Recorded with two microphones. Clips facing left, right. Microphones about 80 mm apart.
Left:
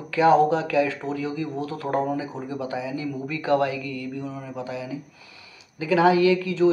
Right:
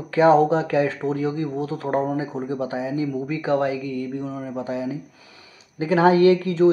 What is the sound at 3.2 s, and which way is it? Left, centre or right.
Speech, right.